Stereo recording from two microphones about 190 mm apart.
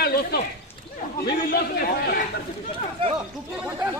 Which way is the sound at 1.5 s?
55° left (ahead or behind).